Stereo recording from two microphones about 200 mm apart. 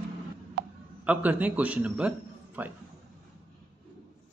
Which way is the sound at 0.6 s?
45° right (ahead or behind).